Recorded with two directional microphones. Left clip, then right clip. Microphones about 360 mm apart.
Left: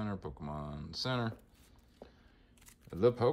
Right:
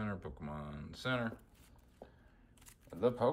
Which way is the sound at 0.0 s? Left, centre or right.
Centre.